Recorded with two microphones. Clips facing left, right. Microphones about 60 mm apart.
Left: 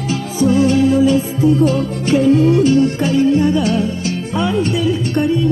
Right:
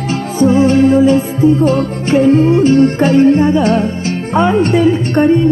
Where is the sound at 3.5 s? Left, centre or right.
Right.